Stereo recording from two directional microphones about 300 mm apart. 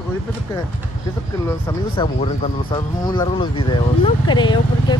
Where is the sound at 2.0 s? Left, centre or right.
Centre.